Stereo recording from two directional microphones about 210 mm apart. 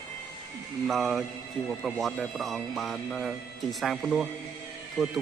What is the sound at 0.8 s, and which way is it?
Speech, centre (ahead or behind).